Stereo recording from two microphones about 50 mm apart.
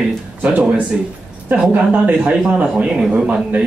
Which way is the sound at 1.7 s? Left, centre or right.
Right.